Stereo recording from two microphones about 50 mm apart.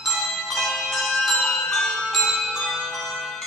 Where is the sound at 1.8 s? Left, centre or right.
Centre.